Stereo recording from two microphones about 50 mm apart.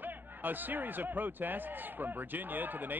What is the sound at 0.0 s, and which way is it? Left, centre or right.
Speech, right.